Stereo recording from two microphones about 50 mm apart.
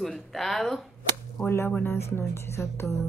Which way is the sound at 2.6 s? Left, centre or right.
Left.